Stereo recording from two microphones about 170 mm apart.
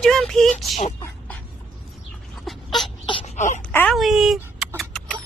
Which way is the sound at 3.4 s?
45° left (ahead or behind).